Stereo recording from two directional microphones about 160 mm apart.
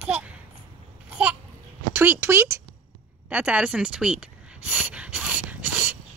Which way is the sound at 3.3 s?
10° right (ahead or behind).